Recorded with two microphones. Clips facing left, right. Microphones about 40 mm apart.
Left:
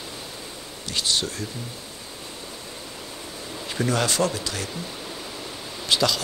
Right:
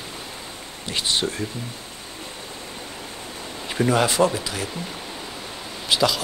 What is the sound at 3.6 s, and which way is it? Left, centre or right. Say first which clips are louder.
Speech: right 4 dB; centre.